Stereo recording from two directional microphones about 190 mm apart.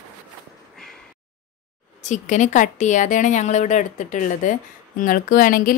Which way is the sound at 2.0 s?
40° left (ahead or behind).